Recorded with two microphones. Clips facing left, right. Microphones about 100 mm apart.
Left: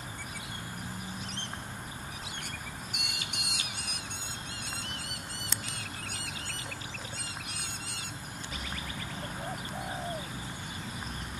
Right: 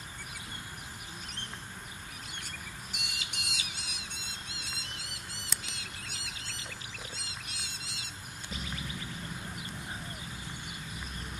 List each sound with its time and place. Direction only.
2.9 s bird: 55° left (ahead or behind)
4.5 s a sound: 55° left (ahead or behind)
7.2 s rodents: 55° left (ahead or behind)